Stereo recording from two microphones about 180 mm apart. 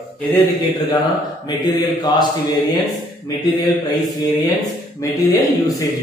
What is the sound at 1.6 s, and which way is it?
Mantra, 25° left (ahead or behind).